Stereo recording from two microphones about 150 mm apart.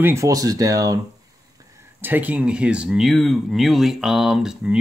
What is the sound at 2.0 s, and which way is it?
Speech, 10° right (ahead or behind).